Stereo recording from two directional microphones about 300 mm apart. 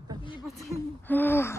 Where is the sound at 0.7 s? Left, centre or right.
Centre.